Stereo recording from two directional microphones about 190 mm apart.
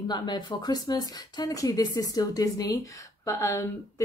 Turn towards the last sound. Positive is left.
turn(degrees=15)  # may be behind; listen again after turning